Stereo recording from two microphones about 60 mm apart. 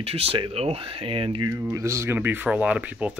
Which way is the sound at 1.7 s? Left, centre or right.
Right.